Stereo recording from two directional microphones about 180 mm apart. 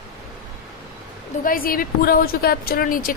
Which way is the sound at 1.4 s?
50° left (ahead or behind).